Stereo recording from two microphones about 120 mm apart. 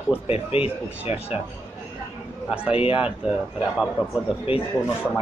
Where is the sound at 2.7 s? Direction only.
50° left (ahead or behind).